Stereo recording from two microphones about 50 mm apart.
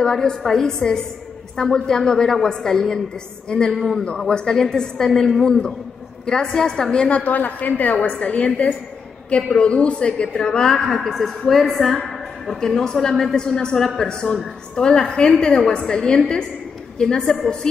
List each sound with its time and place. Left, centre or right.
0.0 s a woman's voice: centre
3.7 s a man's voice: centre